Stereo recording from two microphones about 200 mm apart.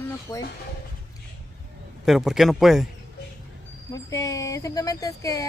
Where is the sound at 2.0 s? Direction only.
Centre (ahead or behind).